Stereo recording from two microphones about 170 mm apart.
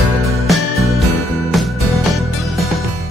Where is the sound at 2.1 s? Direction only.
Centre (ahead or behind).